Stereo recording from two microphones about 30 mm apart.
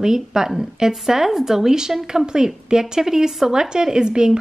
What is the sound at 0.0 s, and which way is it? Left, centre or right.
Speech, right.